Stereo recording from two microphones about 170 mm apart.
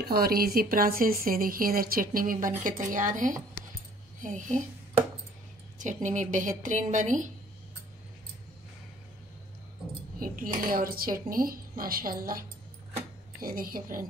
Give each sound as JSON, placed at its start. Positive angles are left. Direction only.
{"t": 0.0, "sound": "a woman's voice", "side_deg": -65}
{"t": 6.0, "sound": "a woman's voice", "side_deg": -45}
{"t": 10.2, "sound": "speech", "side_deg": -55}